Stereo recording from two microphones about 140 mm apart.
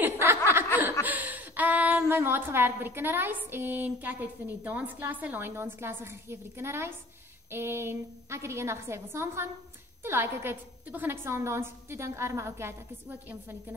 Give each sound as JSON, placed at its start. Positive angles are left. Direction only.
{"t": 0.0, "sound": "snicker", "side_deg": -15}
{"t": 1.0, "sound": "a woman's voice", "side_deg": -10}